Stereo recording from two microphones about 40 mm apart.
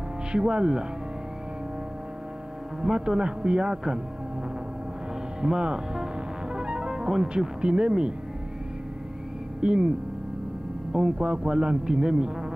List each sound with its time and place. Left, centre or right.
0.3 s speech: right
2.8 s speech: centre
3.2 s speech: right
5.4 s speech: centre
6.5 s music: right
7.2 s speech: right
9.6 s speech: right